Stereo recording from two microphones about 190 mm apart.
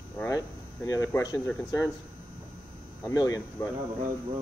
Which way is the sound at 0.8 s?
15° left (ahead or behind).